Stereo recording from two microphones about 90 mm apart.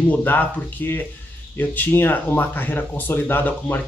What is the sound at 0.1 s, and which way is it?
Speech, 20° left (ahead or behind).